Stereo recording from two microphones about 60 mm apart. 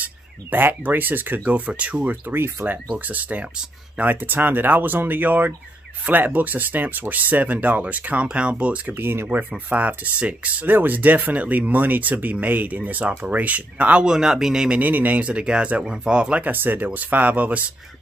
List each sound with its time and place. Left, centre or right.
0.0 s speech: right
2.2 s speech: right
8.9 s speech: right
9.4 s speech: right
14.0 s speech: centre
14.8 s speech: right
15.2 s speech: centre